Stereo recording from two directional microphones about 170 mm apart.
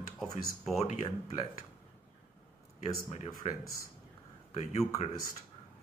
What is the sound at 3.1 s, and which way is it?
Speech, 40° left (ahead or behind).